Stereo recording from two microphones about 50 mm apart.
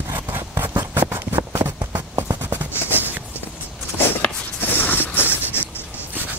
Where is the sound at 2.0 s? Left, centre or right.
Right.